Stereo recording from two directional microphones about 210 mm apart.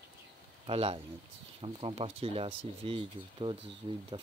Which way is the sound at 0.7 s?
25° right (ahead or behind).